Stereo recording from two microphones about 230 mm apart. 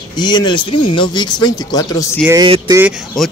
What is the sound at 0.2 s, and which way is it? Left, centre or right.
Speech, centre.